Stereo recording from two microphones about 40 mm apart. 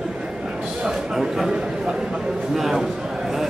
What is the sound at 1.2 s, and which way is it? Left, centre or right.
A man's voice, centre.